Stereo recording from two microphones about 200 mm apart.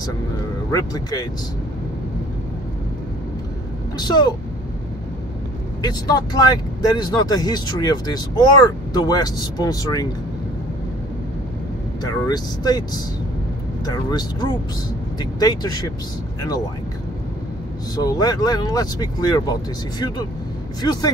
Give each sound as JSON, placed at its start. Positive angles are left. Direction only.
{"t": 0.7, "sound": "speech", "side_deg": 20}
{"t": 4.0, "sound": "speech", "side_deg": 20}
{"t": 5.8, "sound": "speech", "side_deg": 20}
{"t": 12.0, "sound": "speech", "side_deg": 20}
{"t": 17.9, "sound": "speech", "side_deg": 20}
{"t": 20.8, "sound": "speech", "side_deg": 20}